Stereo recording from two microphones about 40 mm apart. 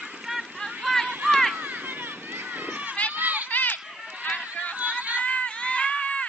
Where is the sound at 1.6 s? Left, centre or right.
Right.